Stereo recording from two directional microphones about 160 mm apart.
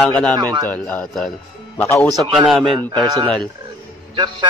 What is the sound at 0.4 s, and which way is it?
Speech, 25° right (ahead or behind).